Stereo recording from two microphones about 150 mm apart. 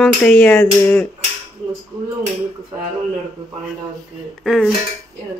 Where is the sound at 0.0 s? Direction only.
5° left (ahead or behind).